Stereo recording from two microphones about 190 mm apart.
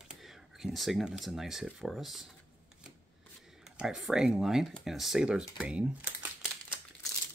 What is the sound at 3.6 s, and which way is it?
Speech, 5° right (ahead or behind).